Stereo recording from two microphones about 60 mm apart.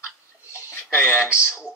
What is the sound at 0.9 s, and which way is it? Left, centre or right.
Speech, right.